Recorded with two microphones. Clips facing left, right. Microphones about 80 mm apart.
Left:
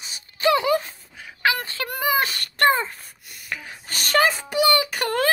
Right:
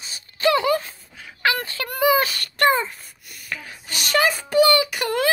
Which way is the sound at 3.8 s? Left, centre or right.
Left.